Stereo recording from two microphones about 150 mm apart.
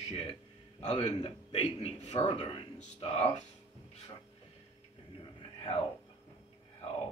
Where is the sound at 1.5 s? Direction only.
45° left (ahead or behind).